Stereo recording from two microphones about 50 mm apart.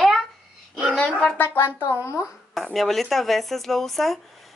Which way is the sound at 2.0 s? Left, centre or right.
Left.